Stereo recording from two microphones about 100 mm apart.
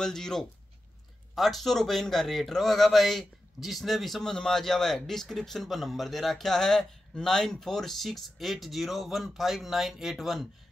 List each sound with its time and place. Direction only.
0.0 s a man's voice: 5° left (ahead or behind)